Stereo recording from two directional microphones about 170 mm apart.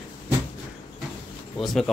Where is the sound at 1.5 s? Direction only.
Centre (ahead or behind).